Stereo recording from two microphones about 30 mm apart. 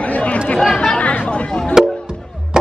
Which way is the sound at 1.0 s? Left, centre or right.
Left.